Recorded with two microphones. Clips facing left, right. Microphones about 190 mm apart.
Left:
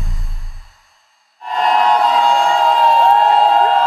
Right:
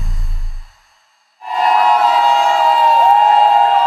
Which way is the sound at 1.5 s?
5° right (ahead or behind).